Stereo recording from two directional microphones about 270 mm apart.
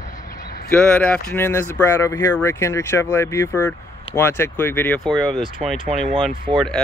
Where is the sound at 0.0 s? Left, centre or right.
Left.